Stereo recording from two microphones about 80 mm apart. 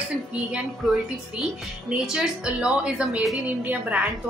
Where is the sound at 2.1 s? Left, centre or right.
Centre.